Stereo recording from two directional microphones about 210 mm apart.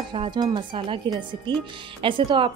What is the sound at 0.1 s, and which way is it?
A woman's voice, 25° right (ahead or behind).